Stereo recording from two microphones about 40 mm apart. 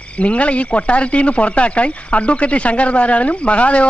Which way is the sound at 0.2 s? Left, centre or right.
Left.